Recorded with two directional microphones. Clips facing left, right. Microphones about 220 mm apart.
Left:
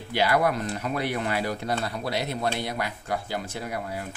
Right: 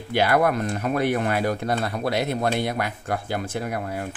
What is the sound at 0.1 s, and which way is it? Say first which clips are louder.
Speech: right 3 dB; 55° right (ahead or behind).